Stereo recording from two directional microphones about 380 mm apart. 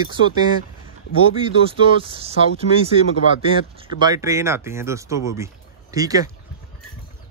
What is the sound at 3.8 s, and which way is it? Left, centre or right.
Speech, centre.